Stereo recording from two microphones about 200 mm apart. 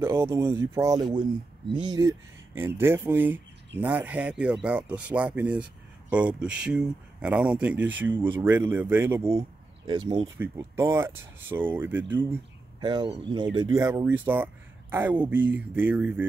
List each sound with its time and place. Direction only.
0.0 s speech: 10° right (ahead or behind)
9.8 s speech: 25° right (ahead or behind); by 12.4 s 10° right (ahead or behind)
12.8 s speech: 25° right (ahead or behind); by 16.3 s 10° right (ahead or behind)